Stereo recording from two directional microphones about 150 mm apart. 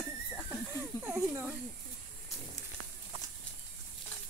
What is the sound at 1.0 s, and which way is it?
Speech, 15° right (ahead or behind).